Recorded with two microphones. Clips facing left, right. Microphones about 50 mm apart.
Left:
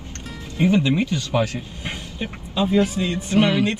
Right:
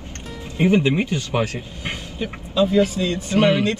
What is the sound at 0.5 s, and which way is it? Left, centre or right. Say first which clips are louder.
Speech: right 1 dB; right.